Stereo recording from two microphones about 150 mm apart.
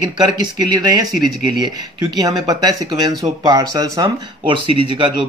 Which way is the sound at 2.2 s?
25° right (ahead or behind).